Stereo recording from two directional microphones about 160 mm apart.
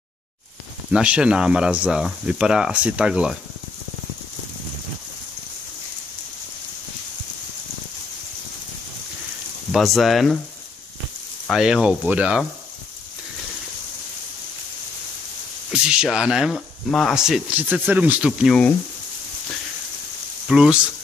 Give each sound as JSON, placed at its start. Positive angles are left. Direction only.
{"t": 0.9, "sound": "speech", "side_deg": -5}
{"t": 9.7, "sound": "speech", "side_deg": 0}
{"t": 11.4, "sound": "speech", "side_deg": -5}
{"t": 15.7, "sound": "speech", "side_deg": -5}
{"t": 20.4, "sound": "speech", "side_deg": -5}